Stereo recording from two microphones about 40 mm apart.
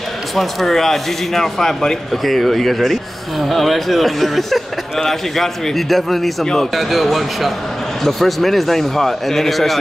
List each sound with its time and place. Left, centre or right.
0.4 s speech: centre
6.4 s speech: centre
6.7 s speech: centre